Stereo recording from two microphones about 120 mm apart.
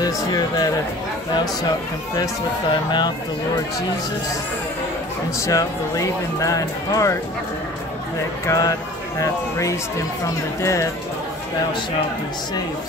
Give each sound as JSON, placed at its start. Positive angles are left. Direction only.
{"t": 0.0, "sound": "speech", "side_deg": 30}
{"t": 2.7, "sound": "speech", "side_deg": 40}
{"t": 5.4, "sound": "speech", "side_deg": 25}
{"t": 8.5, "sound": "speech", "side_deg": 30}